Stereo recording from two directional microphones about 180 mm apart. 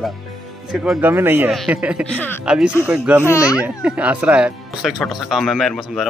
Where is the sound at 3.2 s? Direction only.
15° left (ahead or behind).